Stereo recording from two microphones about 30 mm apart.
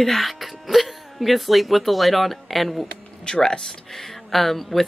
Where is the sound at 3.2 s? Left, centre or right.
Left.